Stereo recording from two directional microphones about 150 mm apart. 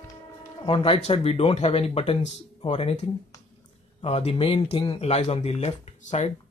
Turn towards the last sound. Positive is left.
turn(degrees=45)  # may be behind; listen again after turning